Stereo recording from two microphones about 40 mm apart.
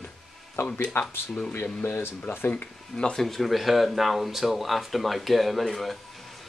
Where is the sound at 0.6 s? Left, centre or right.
Left.